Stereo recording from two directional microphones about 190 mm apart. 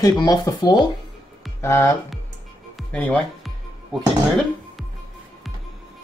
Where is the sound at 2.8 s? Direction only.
5° left (ahead or behind).